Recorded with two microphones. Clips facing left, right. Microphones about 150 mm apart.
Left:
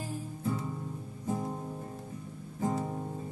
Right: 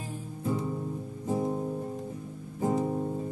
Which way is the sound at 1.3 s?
20° right (ahead or behind).